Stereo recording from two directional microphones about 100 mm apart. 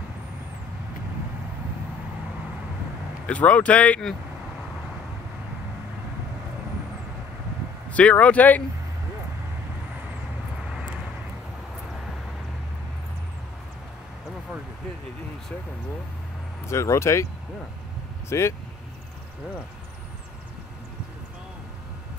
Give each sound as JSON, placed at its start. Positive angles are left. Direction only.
{"t": 3.3, "sound": "speech", "side_deg": 15}
{"t": 7.9, "sound": "speech", "side_deg": 15}
{"t": 16.6, "sound": "speech", "side_deg": 30}
{"t": 18.3, "sound": "speech", "side_deg": 25}